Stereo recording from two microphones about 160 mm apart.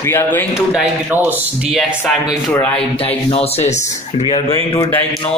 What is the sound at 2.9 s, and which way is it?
Speech, 40° left (ahead or behind).